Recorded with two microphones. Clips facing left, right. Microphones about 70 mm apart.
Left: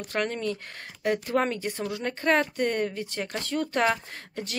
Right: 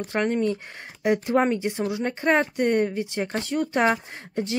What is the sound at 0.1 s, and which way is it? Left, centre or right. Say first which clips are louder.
Speech: right 5 dB; right.